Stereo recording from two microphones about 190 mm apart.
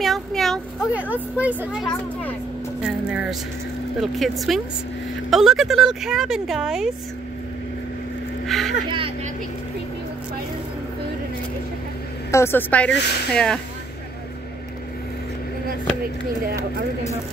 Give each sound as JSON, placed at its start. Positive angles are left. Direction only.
{"t": 0.0, "sound": "a sound", "side_deg": 0}
{"t": 1.1, "sound": "speech", "side_deg": -10}
{"t": 8.5, "sound": "speech", "side_deg": 0}
{"t": 8.8, "sound": "speech", "side_deg": -25}
{"t": 12.3, "sound": "a woman's voice", "side_deg": 15}